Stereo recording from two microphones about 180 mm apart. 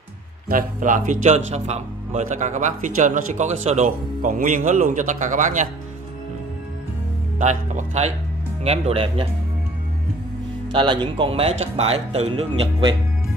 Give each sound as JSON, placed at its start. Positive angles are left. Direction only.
{"t": 0.5, "sound": "speech", "side_deg": -50}
{"t": 7.3, "sound": "speech", "side_deg": -40}
{"t": 10.7, "sound": "speech", "side_deg": -25}